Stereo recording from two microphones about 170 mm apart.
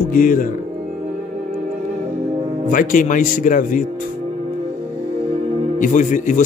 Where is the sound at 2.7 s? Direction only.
50° left (ahead or behind).